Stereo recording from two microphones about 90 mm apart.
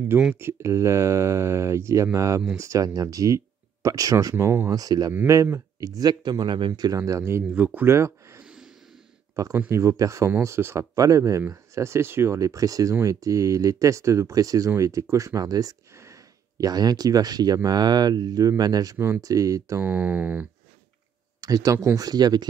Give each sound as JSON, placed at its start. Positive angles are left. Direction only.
{"t": 0.4, "sound": "speech", "side_deg": -30}
{"t": 4.6, "sound": "speech", "side_deg": -45}
{"t": 6.7, "sound": "speech", "side_deg": -40}
{"t": 7.5, "sound": "speech", "side_deg": -20}
{"t": 16.0, "sound": "a sound", "side_deg": -35}
{"t": 17.6, "sound": "speech", "side_deg": -50}
{"t": 18.9, "sound": "speech", "side_deg": -25}
{"t": 19.2, "sound": "speech", "side_deg": -40}
{"t": 19.8, "sound": "speech", "side_deg": -20}
{"t": 21.4, "sound": "speech", "side_deg": -40}